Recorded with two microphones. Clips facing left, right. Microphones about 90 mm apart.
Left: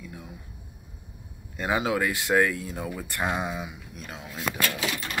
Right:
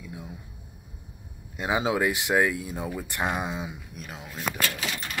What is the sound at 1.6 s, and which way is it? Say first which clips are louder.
Speech: right 1 dB; 20° right (ahead or behind).